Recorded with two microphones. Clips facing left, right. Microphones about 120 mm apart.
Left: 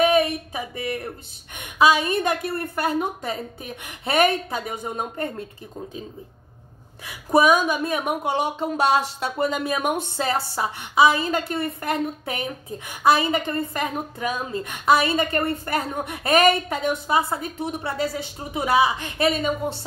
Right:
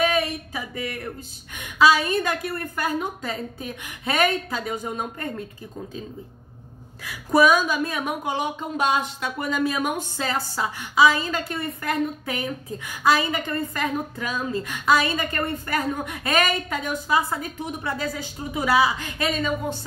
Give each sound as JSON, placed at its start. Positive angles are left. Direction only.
{"t": 0.0, "sound": "a sound", "side_deg": 25}
{"t": 1.5, "sound": "a woman's voice", "side_deg": 25}
{"t": 7.1, "sound": "a woman's voice", "side_deg": 20}
{"t": 9.5, "sound": "a woman's voice", "side_deg": 20}